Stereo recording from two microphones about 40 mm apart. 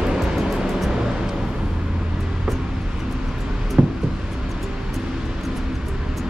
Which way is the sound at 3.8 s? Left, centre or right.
Right.